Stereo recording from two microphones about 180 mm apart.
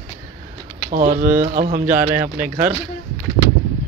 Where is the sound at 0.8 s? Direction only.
50° right (ahead or behind).